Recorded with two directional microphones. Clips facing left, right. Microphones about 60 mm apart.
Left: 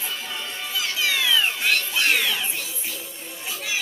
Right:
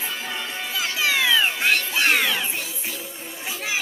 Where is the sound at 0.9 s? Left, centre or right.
Right.